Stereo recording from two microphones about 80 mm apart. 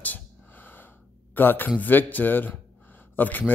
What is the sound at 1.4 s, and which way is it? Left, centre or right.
Speech, left.